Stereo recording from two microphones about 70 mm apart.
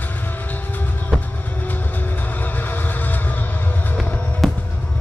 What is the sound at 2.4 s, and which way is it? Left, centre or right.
Music, left.